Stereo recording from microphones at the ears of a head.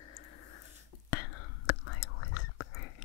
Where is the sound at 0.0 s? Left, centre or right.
Left.